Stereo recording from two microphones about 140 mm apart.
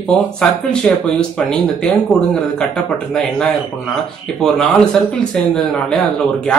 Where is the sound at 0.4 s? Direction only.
5° left (ahead or behind).